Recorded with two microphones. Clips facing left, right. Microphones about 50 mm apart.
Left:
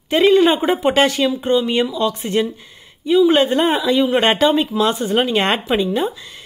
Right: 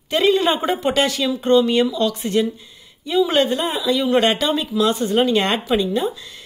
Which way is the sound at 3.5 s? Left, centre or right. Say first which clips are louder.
Left 5 dB; left.